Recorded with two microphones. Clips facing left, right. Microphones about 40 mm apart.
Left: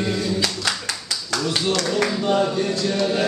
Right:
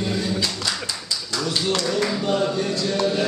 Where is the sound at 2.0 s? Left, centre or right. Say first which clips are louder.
Left 2 dB; centre.